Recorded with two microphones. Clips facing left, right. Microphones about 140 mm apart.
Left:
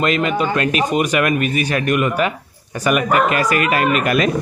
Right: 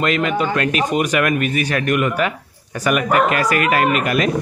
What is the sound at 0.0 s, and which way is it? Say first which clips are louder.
Speech: left 1 dB; 25° left (ahead or behind).